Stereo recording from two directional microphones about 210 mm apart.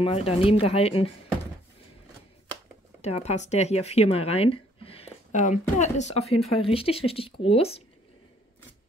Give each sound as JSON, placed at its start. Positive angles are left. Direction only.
{"t": 0.0, "sound": "speech", "side_deg": 30}
{"t": 3.0, "sound": "speech", "side_deg": 30}